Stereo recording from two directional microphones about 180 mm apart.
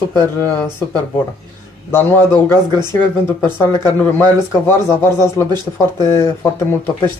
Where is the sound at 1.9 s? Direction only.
15° left (ahead or behind).